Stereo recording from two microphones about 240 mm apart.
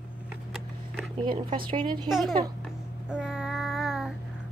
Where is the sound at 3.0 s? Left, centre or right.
Centre.